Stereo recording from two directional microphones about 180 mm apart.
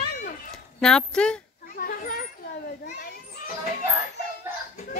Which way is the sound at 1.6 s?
55° left (ahead or behind).